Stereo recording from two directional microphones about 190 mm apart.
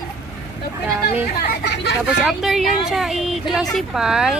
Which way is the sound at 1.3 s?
65° left (ahead or behind).